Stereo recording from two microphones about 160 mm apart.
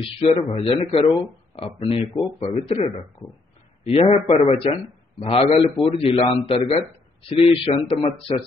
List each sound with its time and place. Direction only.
0.0 s speech: 35° left (ahead or behind)